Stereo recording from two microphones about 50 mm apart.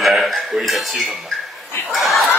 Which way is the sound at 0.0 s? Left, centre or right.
Centre.